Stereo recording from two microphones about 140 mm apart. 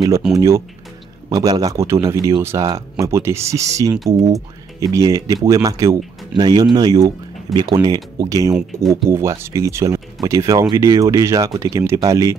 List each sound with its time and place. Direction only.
0.2 s speech: 5° right (ahead or behind)
1.3 s speech: 25° right (ahead or behind)